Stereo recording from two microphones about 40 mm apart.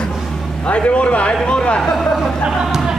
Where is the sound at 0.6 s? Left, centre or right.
Left.